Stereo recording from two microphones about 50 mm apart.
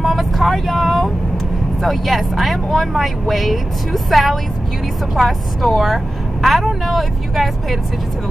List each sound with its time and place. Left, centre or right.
0.0 s vehicle: centre
1.8 s speech: centre